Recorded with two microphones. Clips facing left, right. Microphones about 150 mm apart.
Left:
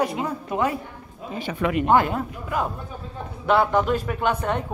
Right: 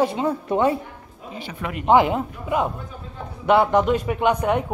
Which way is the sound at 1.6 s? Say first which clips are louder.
Left 8 dB; 90° left.